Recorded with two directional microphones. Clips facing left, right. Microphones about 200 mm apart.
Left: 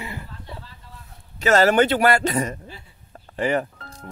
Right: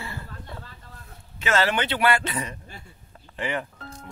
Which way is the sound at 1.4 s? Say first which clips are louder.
Left 8 dB; 40° left (ahead or behind).